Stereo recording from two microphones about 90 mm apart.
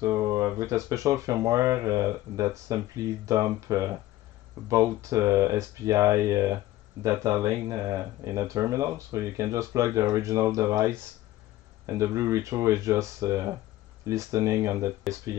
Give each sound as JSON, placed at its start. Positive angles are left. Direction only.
{"t": 0.0, "sound": "speech", "side_deg": -35}